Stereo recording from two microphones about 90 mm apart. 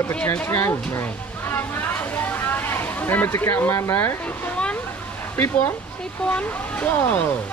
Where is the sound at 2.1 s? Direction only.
20° left (ahead or behind).